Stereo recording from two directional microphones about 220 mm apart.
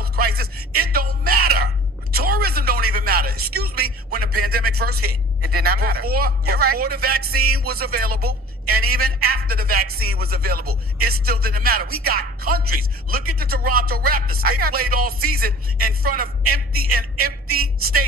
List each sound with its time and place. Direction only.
0.0 s music: 45° right (ahead or behind)
4.4 s a woman's voice: 45° right (ahead or behind)